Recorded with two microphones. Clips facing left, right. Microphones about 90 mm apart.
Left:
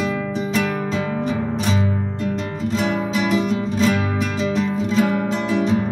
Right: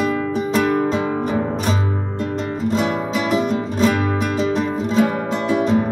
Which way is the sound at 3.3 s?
45° right (ahead or behind).